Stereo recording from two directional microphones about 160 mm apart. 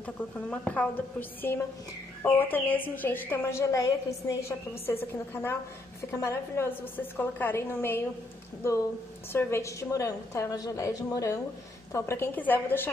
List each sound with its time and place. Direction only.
0.0 s speech: 10° left (ahead or behind)
9.3 s a woman's voice: 15° left (ahead or behind)